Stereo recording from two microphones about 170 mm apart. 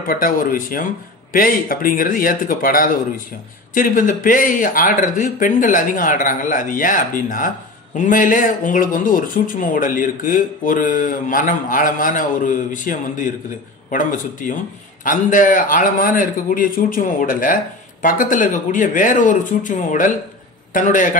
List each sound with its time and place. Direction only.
0.1 s speech: 55° left (ahead or behind)